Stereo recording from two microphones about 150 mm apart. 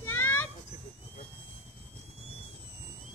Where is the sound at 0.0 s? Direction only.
15° left (ahead or behind).